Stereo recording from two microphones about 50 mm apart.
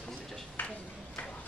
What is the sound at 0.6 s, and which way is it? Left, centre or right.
Speech, left.